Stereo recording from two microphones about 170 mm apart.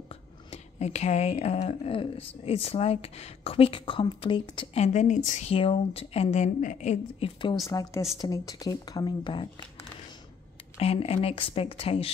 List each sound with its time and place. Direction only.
0.1 s speech: 40° left (ahead or behind)
7.7 s speech: 20° left (ahead or behind)
10.8 s speech: 35° left (ahead or behind)